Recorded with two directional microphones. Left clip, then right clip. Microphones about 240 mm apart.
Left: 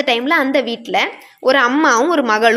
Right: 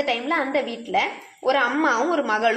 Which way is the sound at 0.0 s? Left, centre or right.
Left.